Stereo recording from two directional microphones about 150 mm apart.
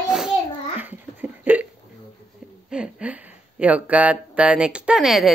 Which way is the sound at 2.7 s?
5° right (ahead or behind).